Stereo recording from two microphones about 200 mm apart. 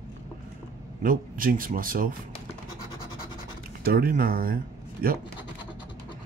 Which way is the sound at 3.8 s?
45° right (ahead or behind).